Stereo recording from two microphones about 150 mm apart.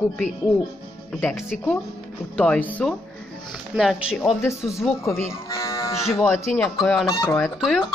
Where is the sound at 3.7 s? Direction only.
5° right (ahead or behind).